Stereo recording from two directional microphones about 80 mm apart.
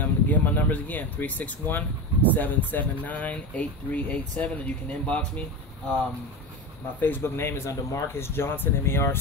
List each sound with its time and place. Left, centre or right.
0.0 s speech: left
7.0 s speech: left